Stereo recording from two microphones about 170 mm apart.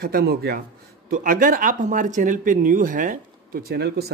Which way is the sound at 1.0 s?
55° right (ahead or behind).